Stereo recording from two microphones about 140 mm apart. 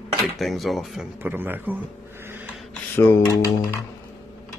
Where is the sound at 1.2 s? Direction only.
15° right (ahead or behind).